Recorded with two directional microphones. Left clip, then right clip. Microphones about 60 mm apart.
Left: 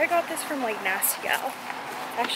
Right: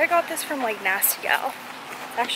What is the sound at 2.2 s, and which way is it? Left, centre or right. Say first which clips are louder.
Speech: right 3 dB; left.